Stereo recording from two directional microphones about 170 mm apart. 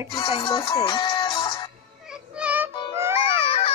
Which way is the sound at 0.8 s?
30° left (ahead or behind).